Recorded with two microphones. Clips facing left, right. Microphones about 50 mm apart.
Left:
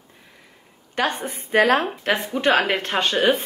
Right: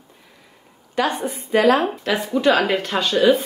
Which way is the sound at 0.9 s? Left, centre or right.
Left.